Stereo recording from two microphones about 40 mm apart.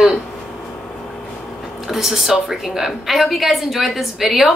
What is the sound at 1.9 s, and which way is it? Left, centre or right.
A woman's voice, centre.